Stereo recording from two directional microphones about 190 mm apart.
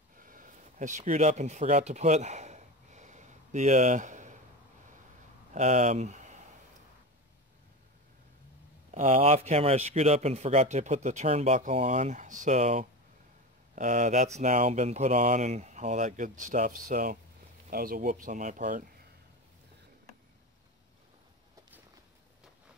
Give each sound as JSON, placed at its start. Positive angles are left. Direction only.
{"t": 0.2, "sound": "a sound", "side_deg": -45}
{"t": 5.5, "sound": "speech", "side_deg": -40}
{"t": 8.9, "sound": "speech", "side_deg": -40}